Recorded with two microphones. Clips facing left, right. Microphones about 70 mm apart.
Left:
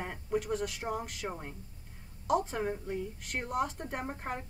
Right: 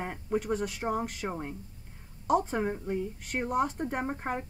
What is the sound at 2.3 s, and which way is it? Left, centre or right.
Speech, centre.